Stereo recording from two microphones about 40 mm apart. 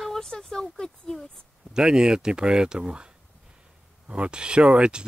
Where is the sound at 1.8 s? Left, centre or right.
Right.